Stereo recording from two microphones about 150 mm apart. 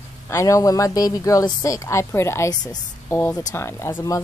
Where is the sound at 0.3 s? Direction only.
20° left (ahead or behind).